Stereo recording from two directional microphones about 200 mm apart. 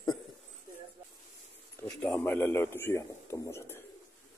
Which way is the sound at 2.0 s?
10° left (ahead or behind).